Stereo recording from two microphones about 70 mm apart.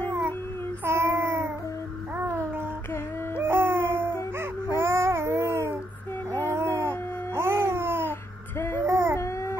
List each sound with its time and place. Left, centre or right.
0.8 s child singing: right
3.3 s music: right
4.6 s baby cry: right
6.4 s babbling: right
8.5 s music: left
8.8 s a sound: right
9.1 s baby cry: left